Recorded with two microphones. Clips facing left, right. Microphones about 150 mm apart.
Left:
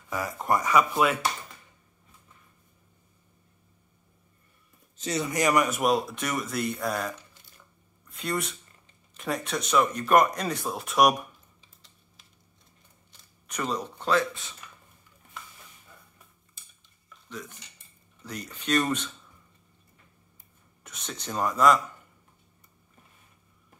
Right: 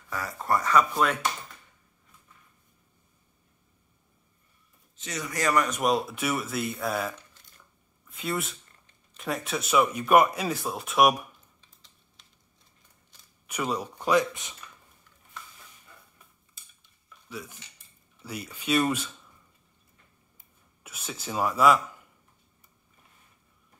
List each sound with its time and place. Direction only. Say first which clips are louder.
0.1 s speech: left 1 dB; 15° left (ahead or behind)
4.9 s speech: left 6 dB; 30° left (ahead or behind)
5.3 s speech: left 1 dB; 15° left (ahead or behind); by 11.2 s centre (ahead or behind)
13.1 s speech: right 1 dB; 10° right (ahead or behind)
17.3 s speech: even; 5° right (ahead or behind)
20.8 s speech: even; 5° right (ahead or behind)